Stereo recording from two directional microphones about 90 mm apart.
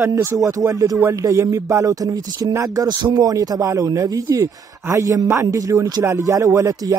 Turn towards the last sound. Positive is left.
turn(degrees=-35)  # may be behind; listen again after turning